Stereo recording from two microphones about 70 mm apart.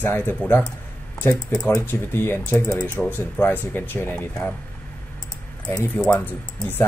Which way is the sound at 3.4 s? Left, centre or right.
Left.